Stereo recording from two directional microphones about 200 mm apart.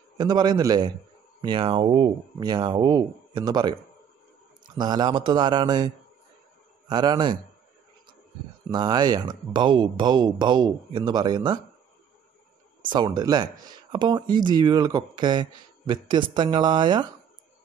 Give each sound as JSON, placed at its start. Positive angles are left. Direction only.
{"t": 0.2, "sound": "speech", "side_deg": -20}
{"t": 4.7, "sound": "speech", "side_deg": -20}
{"t": 6.9, "sound": "speech", "side_deg": -20}
{"t": 8.7, "sound": "speech", "side_deg": -20}
{"t": 12.8, "sound": "speech", "side_deg": -25}